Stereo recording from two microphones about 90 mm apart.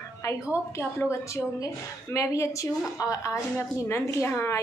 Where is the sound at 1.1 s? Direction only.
35° left (ahead or behind).